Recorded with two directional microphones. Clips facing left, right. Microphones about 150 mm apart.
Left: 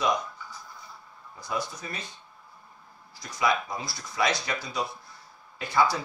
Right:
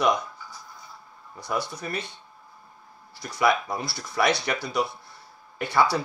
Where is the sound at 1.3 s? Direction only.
65° right (ahead or behind).